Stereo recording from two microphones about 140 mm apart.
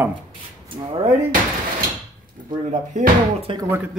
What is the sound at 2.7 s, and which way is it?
Speech, 45° right (ahead or behind).